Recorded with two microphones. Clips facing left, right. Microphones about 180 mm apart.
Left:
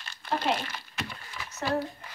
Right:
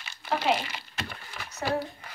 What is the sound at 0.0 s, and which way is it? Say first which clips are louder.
Crumpling: right 1 dB; 5° right (ahead or behind).